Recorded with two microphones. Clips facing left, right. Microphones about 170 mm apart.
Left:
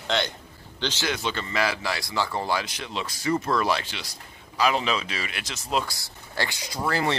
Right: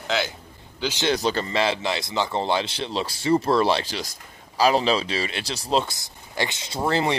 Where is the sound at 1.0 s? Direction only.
35° right (ahead or behind).